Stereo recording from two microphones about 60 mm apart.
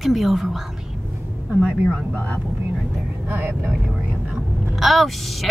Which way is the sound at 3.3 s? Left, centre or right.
Right.